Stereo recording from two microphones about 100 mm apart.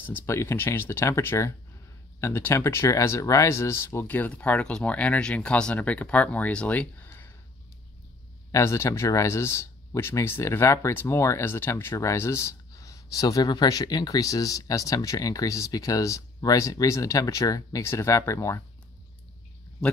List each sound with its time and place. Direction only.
0.0 s speech: 25° left (ahead or behind)
8.5 s speech: 30° left (ahead or behind)